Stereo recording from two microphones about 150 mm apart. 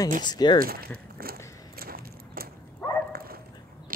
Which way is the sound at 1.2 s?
80° right.